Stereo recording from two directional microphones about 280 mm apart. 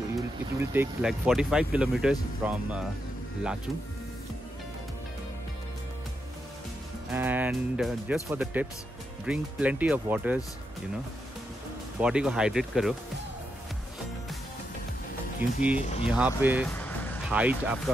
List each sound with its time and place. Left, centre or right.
0.6 s speech: centre
7.1 s speech: centre
12.0 s speech: centre
15.4 s speech: centre
16.7 s vehicle: centre
17.3 s speech: centre